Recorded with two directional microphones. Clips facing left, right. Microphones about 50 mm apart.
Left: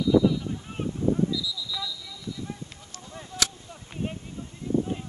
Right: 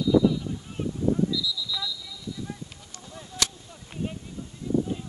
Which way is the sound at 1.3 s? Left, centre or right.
Centre.